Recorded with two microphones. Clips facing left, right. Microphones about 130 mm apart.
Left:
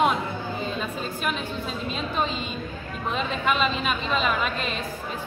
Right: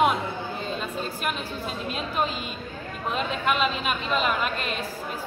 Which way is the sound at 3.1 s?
Centre (ahead or behind).